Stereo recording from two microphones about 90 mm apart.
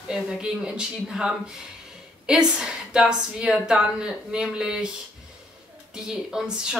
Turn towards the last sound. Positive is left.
turn(degrees=-5)  # may be behind; listen again after turning